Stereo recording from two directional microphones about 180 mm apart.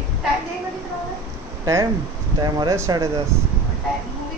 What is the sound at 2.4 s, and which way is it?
Speech, 20° right (ahead or behind).